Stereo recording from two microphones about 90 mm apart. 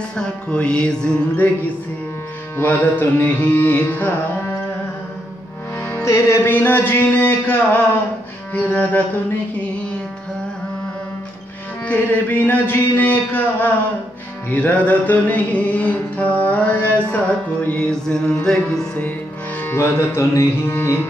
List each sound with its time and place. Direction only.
0.1 s music: 10° left (ahead or behind)
2.5 s carnatic music: 20° left (ahead or behind)
5.8 s music: 20° left (ahead or behind)
6.0 s carnatic music: 30° left (ahead or behind)
11.8 s carnatic music: 20° left (ahead or behind)
14.5 s music: 15° left (ahead or behind)
19.6 s carnatic music: 25° left (ahead or behind)